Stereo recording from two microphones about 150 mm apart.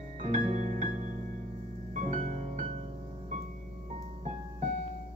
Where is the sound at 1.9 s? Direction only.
55° right (ahead or behind).